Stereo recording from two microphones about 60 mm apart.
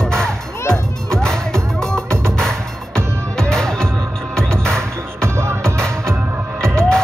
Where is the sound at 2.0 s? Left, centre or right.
Right.